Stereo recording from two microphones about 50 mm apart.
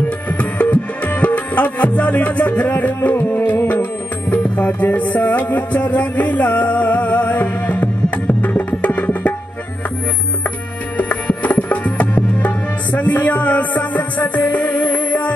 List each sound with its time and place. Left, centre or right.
0.3 s music: left
4.3 s music: left
11.0 s music: left